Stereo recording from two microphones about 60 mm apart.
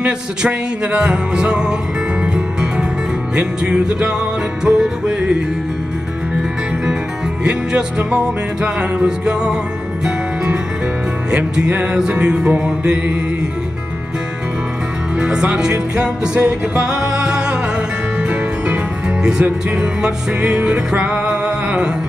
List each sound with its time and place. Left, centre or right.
0.0 s music: centre
7.4 s music: centre
15.1 s music: centre
19.2 s music: centre